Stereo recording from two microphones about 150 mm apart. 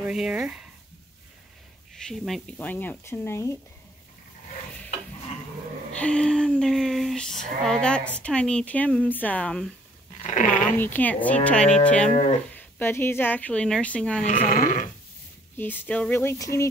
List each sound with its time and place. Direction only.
0.0 s speech: 5° right (ahead or behind)
2.0 s speech: 5° left (ahead or behind)
2.5 s a woman's voice: 10° left (ahead or behind)
5.9 s a woman's voice: 5° left (ahead or behind)
10.1 s dog: 55° left (ahead or behind)
10.8 s a woman's voice: 10° left (ahead or behind)
12.1 s speech: 55° left (ahead or behind)
12.5 s a woman's voice: 15° left (ahead or behind)
14.2 s speech: 60° left (ahead or behind)
15.5 s a woman's voice: 15° left (ahead or behind)